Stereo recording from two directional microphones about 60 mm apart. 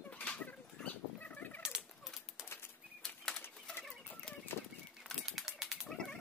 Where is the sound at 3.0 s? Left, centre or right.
Centre.